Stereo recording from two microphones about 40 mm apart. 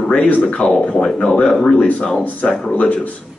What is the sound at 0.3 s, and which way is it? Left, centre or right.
A man's voice, left.